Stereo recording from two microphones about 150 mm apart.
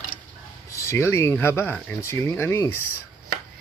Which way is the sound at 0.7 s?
20° left (ahead or behind).